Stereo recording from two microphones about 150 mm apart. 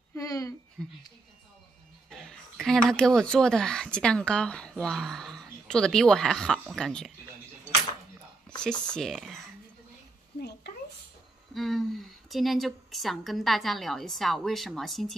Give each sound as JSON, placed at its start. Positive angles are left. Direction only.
{"t": 0.1, "sound": "a sound", "side_deg": 20}
{"t": 0.8, "sound": "speech", "side_deg": 0}
{"t": 2.0, "sound": "speech", "side_deg": 5}
{"t": 8.6, "sound": "speech", "side_deg": 5}
{"t": 11.5, "sound": "a woman's voice", "side_deg": 0}